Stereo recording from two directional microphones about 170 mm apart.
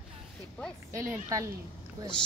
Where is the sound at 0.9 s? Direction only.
20° right (ahead or behind).